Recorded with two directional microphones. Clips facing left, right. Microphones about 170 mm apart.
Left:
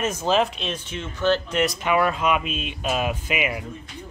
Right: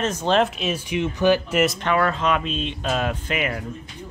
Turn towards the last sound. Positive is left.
turn(degrees=10)  # may be behind; listen again after turning